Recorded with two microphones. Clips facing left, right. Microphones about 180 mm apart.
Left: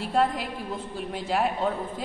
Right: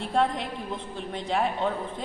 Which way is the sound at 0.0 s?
5° left (ahead or behind).